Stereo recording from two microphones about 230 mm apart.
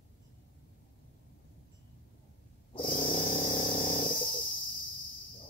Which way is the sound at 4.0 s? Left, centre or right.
Left.